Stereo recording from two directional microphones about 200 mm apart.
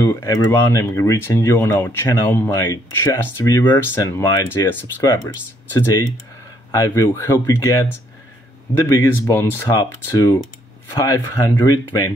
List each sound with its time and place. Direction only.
0.0 s speech: 15° left (ahead or behind)